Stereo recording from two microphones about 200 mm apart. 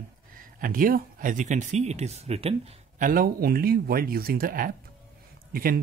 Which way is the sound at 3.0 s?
45° right (ahead or behind).